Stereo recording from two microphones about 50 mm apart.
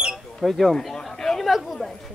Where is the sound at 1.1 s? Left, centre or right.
Centre.